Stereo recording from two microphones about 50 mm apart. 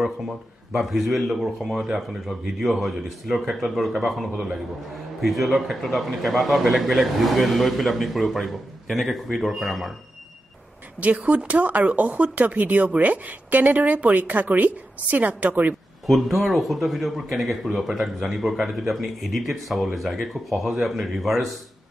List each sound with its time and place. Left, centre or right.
0.7 s a man's voice: centre
11.0 s speech: right
16.1 s a man's voice: centre